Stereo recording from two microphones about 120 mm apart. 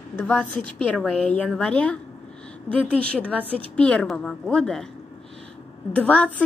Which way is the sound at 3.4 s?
50° right (ahead or behind).